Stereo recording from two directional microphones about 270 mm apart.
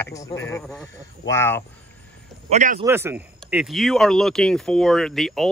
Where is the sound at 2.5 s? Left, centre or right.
Right.